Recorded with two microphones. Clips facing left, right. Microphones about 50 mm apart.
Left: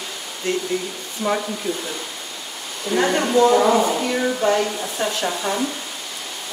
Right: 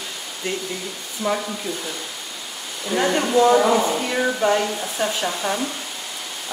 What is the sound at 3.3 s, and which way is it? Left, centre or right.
Speech, centre.